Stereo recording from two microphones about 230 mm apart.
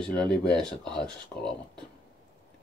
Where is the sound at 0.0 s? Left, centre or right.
Centre.